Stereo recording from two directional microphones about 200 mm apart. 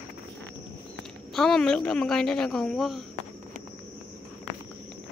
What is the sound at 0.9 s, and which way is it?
A woman's voice, 5° left (ahead or behind).